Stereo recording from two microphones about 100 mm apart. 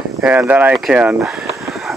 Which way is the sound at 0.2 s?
15° right (ahead or behind).